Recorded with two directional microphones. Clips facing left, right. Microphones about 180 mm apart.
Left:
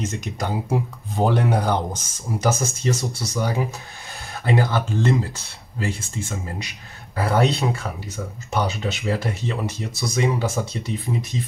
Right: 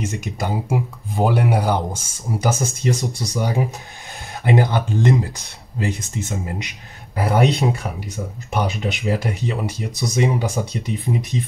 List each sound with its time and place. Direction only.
0.0 s speech: 10° right (ahead or behind)